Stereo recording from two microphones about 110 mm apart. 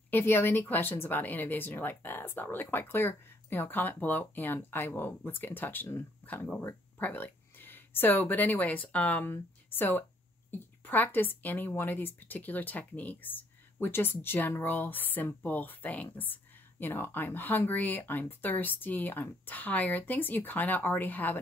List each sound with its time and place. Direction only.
0.1 s a woman's voice: 20° left (ahead or behind)